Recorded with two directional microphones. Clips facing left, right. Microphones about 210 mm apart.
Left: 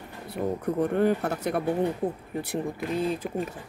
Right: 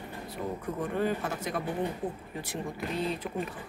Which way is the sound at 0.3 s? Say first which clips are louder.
Left 8 dB; 65° left (ahead or behind).